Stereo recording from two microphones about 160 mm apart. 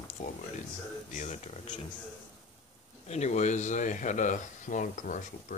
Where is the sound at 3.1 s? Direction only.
45° left (ahead or behind).